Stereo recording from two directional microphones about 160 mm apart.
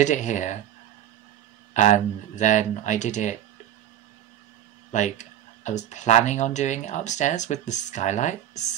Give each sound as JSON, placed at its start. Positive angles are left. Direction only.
{"t": 0.0, "sound": "speech", "side_deg": 50}
{"t": 1.7, "sound": "speech", "side_deg": 50}
{"t": 4.9, "sound": "speech", "side_deg": 50}